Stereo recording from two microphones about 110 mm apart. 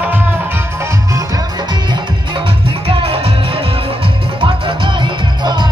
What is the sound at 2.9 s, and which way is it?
Music, 55° right (ahead or behind).